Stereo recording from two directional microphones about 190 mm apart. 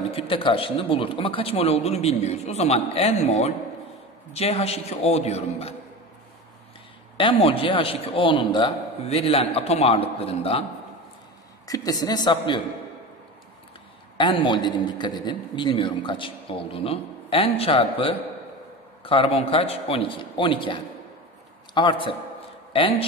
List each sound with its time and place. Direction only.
0.1 s speech: 30° left (ahead or behind)
7.2 s a man's voice: 30° left (ahead or behind)
11.6 s a man's voice: 20° left (ahead or behind)
14.1 s a man's voice: 25° left (ahead or behind)